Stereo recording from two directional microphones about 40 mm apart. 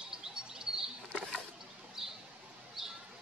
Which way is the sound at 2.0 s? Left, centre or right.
Centre.